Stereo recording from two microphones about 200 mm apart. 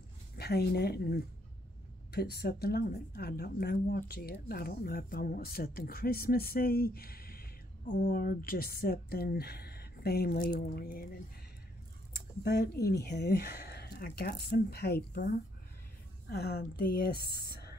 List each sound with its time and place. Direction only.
0.4 s speech: 50° left (ahead or behind)
12.4 s speech: 55° left (ahead or behind)